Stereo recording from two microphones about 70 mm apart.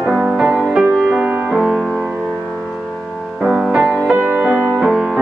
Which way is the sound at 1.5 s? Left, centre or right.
Centre.